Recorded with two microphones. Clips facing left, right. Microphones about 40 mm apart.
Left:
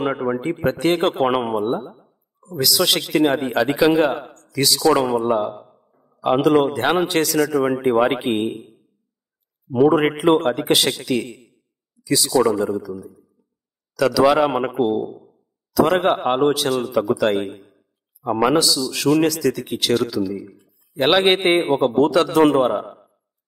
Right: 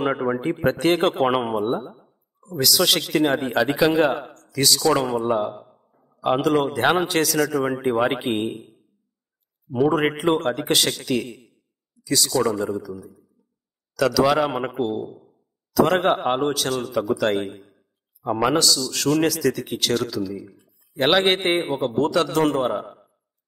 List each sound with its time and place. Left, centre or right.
0.0 s a man's voice: centre
22.4 s a man's voice: left
22.7 s a sound: centre